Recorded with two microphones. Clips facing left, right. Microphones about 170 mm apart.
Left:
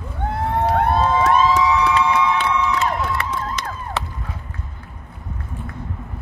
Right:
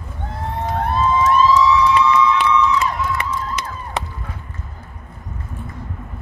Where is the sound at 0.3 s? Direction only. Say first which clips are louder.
Left 5 dB; 65° left (ahead or behind).